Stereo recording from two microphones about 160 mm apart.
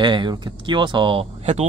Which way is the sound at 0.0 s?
30° right (ahead or behind).